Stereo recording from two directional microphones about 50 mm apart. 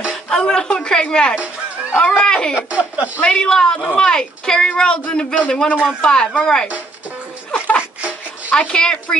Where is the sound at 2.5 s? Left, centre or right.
Right.